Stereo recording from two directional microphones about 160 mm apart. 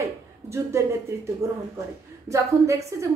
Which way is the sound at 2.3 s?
20° right (ahead or behind).